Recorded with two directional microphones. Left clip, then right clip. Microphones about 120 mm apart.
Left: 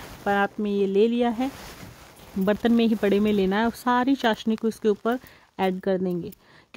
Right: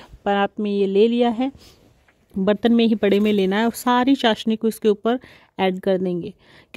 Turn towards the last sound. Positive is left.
turn(degrees=-35)  # may be behind; listen again after turning